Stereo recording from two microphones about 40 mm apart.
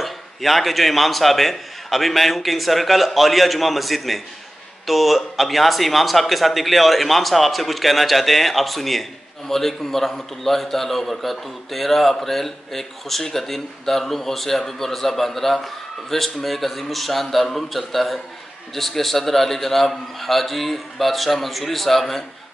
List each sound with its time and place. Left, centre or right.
0.0 s a man's voice: centre